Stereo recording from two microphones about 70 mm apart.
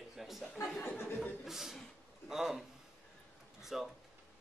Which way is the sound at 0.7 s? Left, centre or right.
Left.